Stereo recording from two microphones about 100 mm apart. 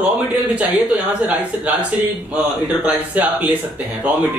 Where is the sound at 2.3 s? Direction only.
15° right (ahead or behind).